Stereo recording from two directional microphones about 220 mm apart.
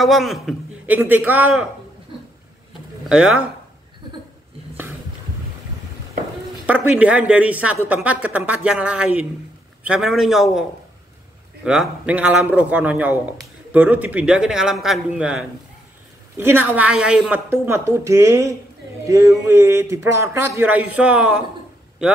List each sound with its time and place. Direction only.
0.0 s a woman's voice: centre (ahead or behind)
3.1 s a man's voice: 5° right (ahead or behind)
6.6 s a woman's voice: 5° right (ahead or behind)
11.6 s a man's voice: 5° right (ahead or behind)